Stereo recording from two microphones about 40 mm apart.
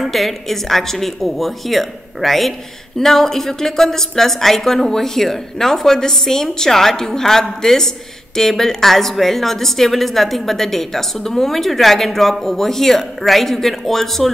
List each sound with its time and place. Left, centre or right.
0.0 s a woman's voice: centre